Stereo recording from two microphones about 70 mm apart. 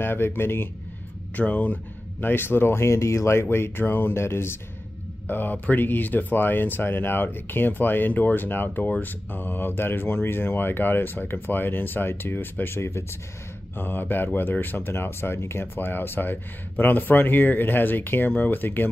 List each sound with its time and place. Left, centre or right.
0.0 s speech: left
1.3 s speech: centre